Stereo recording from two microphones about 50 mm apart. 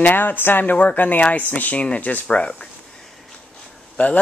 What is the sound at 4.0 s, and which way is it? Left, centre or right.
Speech, left.